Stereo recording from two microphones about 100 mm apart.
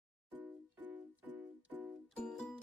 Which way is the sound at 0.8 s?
15° right (ahead or behind).